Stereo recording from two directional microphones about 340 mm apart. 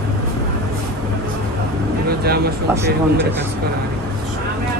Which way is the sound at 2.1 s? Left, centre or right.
Right.